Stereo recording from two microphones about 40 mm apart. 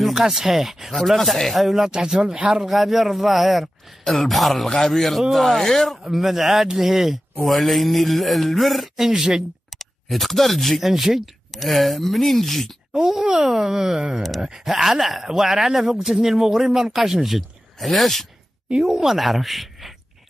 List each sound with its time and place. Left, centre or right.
0.1 s speech: centre
2.2 s speech: centre
2.6 s a man's voice: centre
6.0 s speech: centre
9.7 s speech: centre
13.4 s speech: centre
18.8 s speech: centre
19.1 s speech: centre